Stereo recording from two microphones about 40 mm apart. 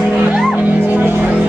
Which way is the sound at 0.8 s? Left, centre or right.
Right.